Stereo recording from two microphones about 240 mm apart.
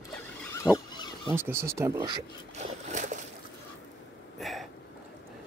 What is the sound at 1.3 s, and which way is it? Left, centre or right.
Speech, centre.